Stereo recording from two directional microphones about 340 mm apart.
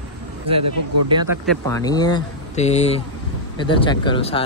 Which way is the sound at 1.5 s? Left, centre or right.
Centre.